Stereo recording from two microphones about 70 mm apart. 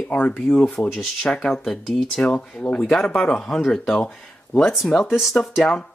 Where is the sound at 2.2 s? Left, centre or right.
Centre.